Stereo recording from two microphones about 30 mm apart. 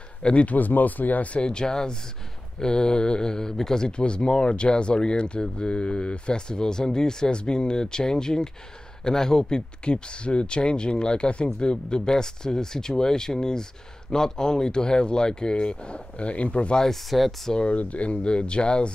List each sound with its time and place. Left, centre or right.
0.2 s speech: left
0.6 s speech: left
1.3 s speech: left
3.8 s speech: left
16.9 s speech: centre
17.6 s speech: left
18.2 s speech: left